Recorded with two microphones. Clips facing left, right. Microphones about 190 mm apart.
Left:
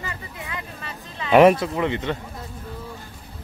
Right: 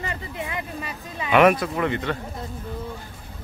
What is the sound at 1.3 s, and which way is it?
Speech, 25° left (ahead or behind).